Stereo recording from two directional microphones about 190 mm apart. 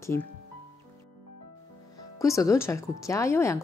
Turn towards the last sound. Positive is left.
turn(degrees=15)  # may be behind; listen again after turning